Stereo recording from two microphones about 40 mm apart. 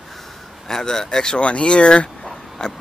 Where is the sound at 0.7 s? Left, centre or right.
Centre.